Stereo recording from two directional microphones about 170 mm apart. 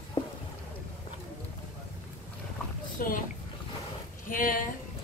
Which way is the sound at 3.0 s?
55° left (ahead or behind).